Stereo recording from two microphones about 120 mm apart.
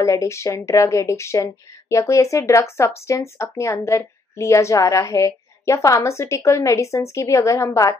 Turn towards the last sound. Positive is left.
turn(degrees=25)  # may be behind; listen again after turning